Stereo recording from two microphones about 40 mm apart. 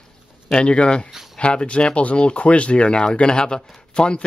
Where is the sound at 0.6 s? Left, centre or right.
Left.